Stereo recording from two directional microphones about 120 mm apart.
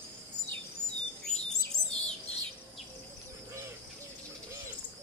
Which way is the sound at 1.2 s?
5° left (ahead or behind).